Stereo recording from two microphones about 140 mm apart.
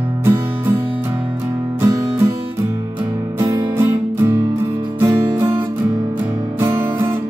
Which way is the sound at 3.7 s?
15° right (ahead or behind).